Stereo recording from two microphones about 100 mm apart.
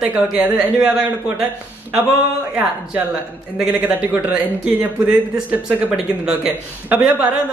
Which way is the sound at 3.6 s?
10° right (ahead or behind).